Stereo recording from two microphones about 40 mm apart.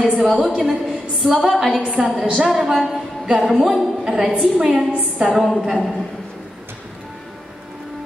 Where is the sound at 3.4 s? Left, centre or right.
Centre.